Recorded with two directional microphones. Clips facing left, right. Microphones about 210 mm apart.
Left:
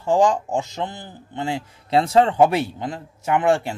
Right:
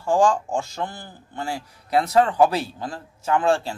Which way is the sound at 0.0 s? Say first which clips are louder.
Left 1 dB; 20° left (ahead or behind).